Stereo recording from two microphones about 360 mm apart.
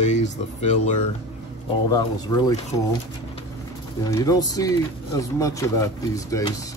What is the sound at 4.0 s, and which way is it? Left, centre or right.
Speech, centre.